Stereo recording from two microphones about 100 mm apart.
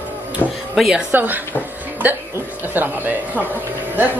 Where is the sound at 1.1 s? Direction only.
20° right (ahead or behind).